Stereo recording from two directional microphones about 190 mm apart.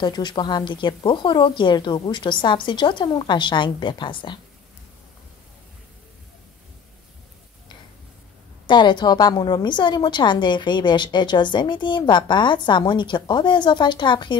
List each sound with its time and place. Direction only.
0.0 s a woman's voice: 25° left (ahead or behind)
8.6 s a woman's voice: 25° left (ahead or behind)